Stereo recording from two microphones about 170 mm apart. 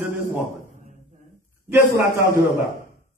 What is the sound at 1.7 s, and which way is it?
Speech, 15° right (ahead or behind).